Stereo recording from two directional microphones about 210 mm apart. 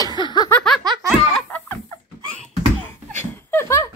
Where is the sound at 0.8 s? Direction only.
20° right (ahead or behind).